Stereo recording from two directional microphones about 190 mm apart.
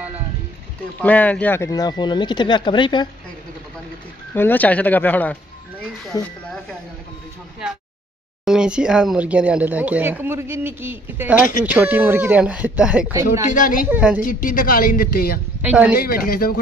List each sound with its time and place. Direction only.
1.0 s speech: 10° left (ahead or behind); by 3.1 s 25° left (ahead or behind)
4.3 s speech: 10° left (ahead or behind)
8.5 s speech: 5° right (ahead or behind)
13.5 s speech: 45° left (ahead or behind)
13.8 s speech: 10° right (ahead or behind)
14.2 s speech: 45° left (ahead or behind)
15.6 s speech: 10° right (ahead or behind)
16.0 s speech: 50° left (ahead or behind)